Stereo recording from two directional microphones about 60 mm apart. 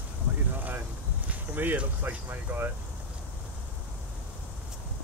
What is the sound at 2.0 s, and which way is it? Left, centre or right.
Speech, right.